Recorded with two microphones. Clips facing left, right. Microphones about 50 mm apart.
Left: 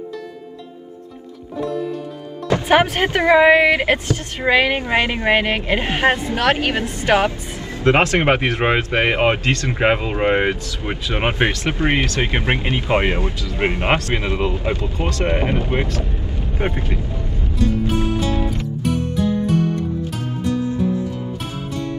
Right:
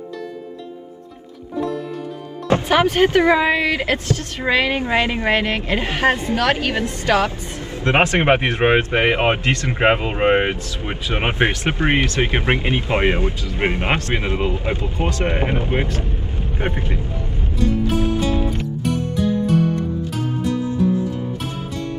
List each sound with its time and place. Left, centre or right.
1.6 s music: centre
2.7 s a woman's voice: left
7.8 s speech: right
11.1 s speech: centre
11.5 s speech: right
13.6 s speech: centre
13.9 s speech: right
16.6 s vehicle: right
18.9 s music: centre